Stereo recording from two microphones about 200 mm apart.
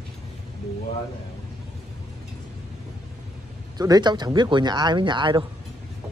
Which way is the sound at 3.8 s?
20° right (ahead or behind).